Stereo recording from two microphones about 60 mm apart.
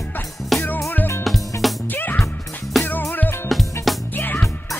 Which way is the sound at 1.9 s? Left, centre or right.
Left.